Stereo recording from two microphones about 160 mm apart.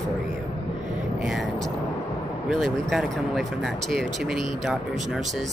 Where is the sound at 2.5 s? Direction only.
Centre (ahead or behind).